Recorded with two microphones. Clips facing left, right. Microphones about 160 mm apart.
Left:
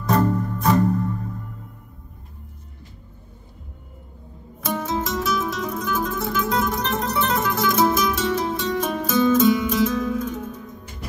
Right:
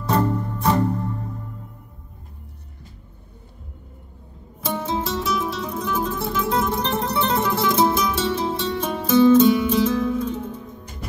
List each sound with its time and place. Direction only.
0.0 s music: 30° right (ahead or behind)
4.6 s music: 30° right (ahead or behind)